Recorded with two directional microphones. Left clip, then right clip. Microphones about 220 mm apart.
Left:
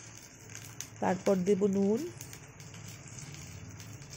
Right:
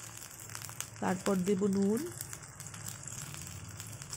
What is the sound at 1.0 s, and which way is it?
Speech, 15° left (ahead or behind).